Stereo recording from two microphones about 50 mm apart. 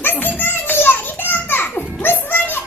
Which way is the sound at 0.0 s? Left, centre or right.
Left.